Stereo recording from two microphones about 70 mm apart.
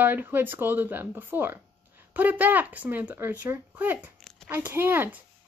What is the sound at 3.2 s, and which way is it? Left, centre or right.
Speech, right.